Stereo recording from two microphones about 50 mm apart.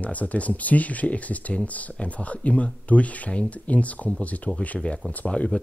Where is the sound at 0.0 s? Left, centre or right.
Left.